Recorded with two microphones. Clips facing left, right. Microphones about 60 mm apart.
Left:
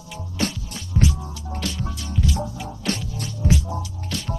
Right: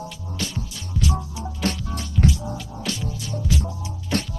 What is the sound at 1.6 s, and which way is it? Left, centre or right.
Music, right.